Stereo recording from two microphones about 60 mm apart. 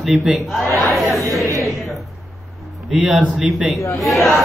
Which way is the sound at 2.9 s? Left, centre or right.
Centre.